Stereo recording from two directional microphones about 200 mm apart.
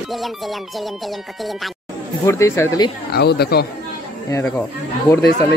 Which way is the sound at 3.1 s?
55° left (ahead or behind).